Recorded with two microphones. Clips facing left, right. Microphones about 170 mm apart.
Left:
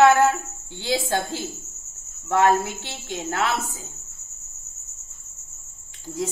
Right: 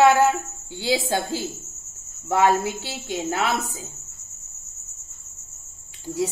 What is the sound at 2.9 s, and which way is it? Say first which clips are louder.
Speech: right 3 dB; 20° right (ahead or behind).